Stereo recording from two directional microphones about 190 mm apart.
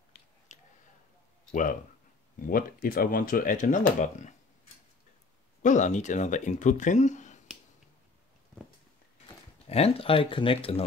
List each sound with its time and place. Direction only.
0.5 s a sound: 40° left (ahead or behind)
1.5 s speech: 45° left (ahead or behind)
5.6 s speech: 40° left (ahead or behind)
9.7 s speech: 30° left (ahead or behind)